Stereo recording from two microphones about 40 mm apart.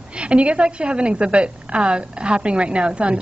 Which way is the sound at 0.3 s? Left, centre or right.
Right.